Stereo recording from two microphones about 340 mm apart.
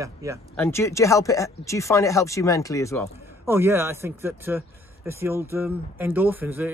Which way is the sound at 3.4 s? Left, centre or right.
Centre.